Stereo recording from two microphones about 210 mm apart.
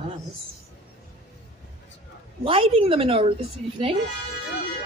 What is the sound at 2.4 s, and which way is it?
Speech, 25° right (ahead or behind).